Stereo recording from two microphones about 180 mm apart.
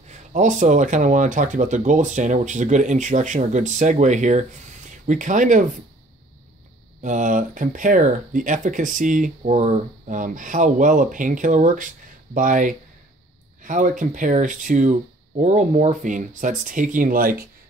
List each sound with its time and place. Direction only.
0.1 s speech: 40° right (ahead or behind)
7.0 s speech: 45° right (ahead or behind)